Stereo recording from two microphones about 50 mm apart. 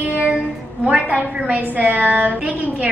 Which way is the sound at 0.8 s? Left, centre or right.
Right.